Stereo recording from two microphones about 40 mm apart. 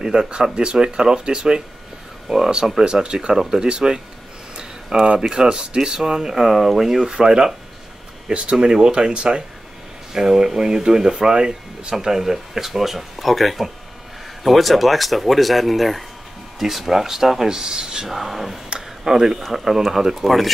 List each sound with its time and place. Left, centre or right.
0.0 s speech: centre
2.8 s speech: right
4.6 s a sound: centre
5.3 s speech: centre
6.4 s speech: centre
7.0 s speech: right
10.1 s speech: centre
18.0 s speech: centre
18.7 s a sound: centre
19.4 s speech: centre